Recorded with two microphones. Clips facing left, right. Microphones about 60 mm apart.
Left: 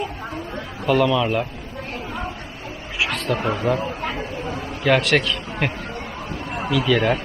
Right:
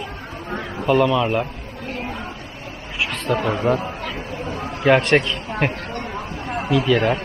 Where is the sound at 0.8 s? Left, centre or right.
Centre.